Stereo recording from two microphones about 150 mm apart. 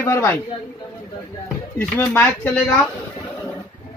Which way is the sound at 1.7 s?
15° left (ahead or behind).